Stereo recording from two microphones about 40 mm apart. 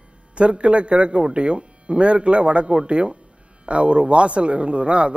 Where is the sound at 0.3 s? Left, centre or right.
Right.